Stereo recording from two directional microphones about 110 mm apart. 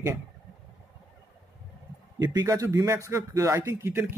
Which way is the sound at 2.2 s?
35° right (ahead or behind).